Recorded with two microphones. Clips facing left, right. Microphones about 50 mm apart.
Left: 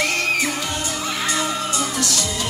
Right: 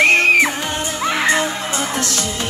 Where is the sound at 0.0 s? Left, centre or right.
Right.